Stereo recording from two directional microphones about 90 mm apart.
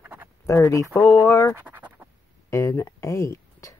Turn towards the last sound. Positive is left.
turn(degrees=30)  # may be behind; listen again after turning